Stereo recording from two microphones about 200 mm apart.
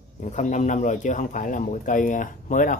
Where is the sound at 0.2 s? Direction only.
35° left (ahead or behind).